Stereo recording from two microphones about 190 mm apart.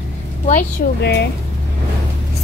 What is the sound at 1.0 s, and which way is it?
Music, 60° left (ahead or behind).